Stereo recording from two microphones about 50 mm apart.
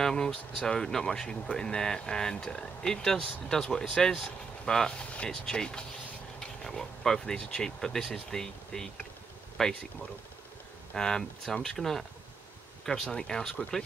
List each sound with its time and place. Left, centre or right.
0.0 s speech: centre
6.4 s a sound: centre
7.3 s speech: centre
7.8 s speech: centre
10.9 s speech: centre